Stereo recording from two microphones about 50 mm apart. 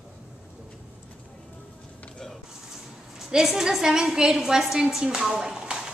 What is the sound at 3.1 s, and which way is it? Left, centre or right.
A woman's voice, centre.